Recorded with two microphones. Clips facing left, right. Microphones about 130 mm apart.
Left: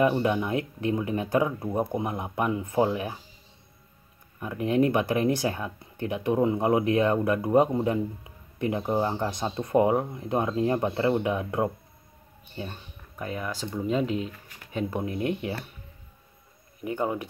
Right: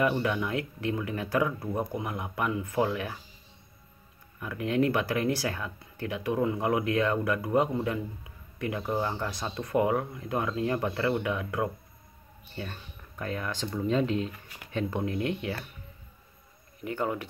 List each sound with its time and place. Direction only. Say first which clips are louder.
0.0 s speech: left 4 dB; 25° left (ahead or behind)
4.4 s speech: left 3 dB; 25° left (ahead or behind)
13.1 s speech: left 1 dB; 10° left (ahead or behind)
16.8 s speech: left 2 dB; 20° left (ahead or behind)